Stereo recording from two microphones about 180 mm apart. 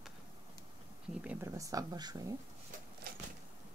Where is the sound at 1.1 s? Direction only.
5° right (ahead or behind).